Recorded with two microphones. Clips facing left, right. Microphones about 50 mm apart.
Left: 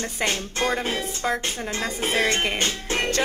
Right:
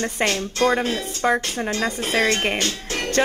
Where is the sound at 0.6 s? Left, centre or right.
Centre.